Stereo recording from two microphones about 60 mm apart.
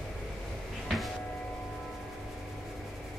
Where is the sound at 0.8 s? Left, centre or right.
Centre.